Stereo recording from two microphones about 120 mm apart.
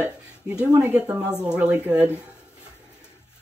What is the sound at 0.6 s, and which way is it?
Speech, 15° right (ahead or behind).